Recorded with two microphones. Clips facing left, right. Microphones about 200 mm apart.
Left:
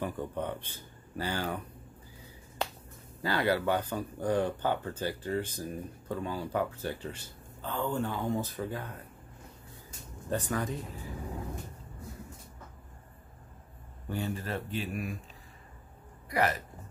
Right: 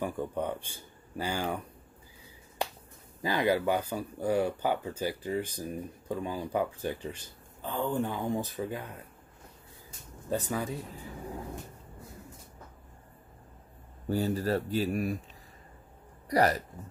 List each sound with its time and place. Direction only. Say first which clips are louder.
0.0 s speech: right 2 dB; 10° right (ahead or behind)
3.2 s speech: right 2 dB; 15° right (ahead or behind)
10.3 s speech: right 1 dB; 10° right (ahead or behind)
14.0 s speech: right 6 dB; 35° right (ahead or behind)
16.3 s speech: right 4 dB; 40° right (ahead or behind)